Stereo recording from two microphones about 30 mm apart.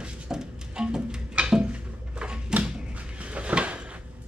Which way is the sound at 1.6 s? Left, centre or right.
Right.